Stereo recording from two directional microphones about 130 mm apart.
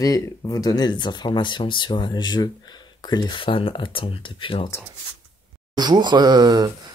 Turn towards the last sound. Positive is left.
turn(degrees=-30)  # may be behind; listen again after turning